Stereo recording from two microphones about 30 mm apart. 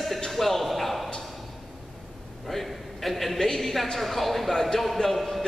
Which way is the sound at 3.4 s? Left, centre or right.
Centre.